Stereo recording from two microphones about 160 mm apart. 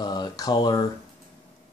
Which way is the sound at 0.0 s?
25° left (ahead or behind).